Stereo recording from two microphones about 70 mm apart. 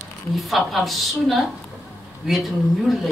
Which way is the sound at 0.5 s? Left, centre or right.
Centre.